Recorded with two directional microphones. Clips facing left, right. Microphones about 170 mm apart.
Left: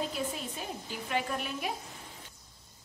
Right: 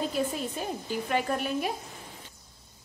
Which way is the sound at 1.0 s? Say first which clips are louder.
Right 4 dB; 45° right (ahead or behind).